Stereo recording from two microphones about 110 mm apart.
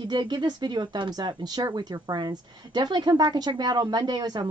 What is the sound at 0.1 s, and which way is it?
Speech, 40° right (ahead or behind).